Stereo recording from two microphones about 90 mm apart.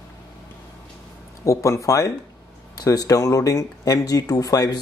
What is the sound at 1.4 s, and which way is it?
Speech, 35° left (ahead or behind).